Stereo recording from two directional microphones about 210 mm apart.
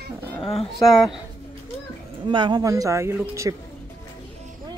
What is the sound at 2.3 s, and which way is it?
Speech, 20° right (ahead or behind).